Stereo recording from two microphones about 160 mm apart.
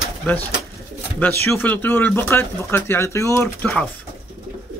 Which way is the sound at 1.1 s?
10° left (ahead or behind).